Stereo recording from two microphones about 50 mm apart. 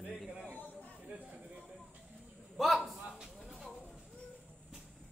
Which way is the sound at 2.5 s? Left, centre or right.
Centre.